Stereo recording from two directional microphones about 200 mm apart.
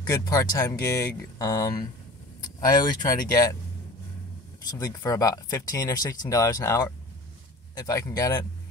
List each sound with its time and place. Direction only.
0.0 s speech: 20° left (ahead or behind)
4.6 s speech: 20° left (ahead or behind)